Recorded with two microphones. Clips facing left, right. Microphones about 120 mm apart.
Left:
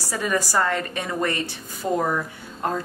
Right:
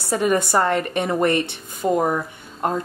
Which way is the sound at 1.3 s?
60° right (ahead or behind).